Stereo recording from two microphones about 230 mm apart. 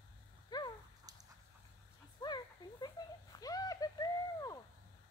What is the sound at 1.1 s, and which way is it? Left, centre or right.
Dog, centre.